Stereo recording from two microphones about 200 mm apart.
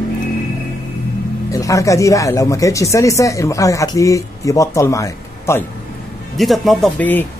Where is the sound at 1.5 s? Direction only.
15° left (ahead or behind).